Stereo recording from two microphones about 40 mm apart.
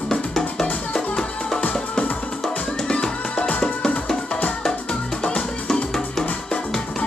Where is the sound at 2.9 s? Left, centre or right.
Left.